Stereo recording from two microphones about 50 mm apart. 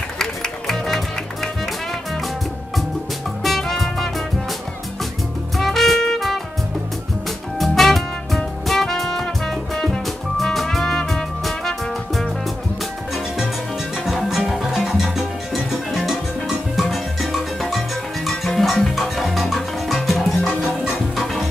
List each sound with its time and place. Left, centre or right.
0.2 s music: centre
3.4 s music: centre
5.6 s music: centre
7.5 s music: centre
14.0 s music: centre